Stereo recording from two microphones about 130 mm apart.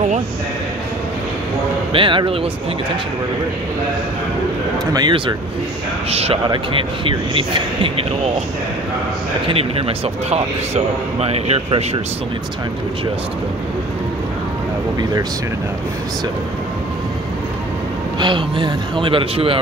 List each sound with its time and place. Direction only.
1.9 s a man's voice: 40° right (ahead or behind)
4.9 s a man's voice: 35° right (ahead or behind)
6.0 s a man's voice: 50° right (ahead or behind)
6.4 s a man's voice: 40° right (ahead or behind)
9.5 s a man's voice: 50° right (ahead or behind)
18.2 s a man's voice: 40° right (ahead or behind)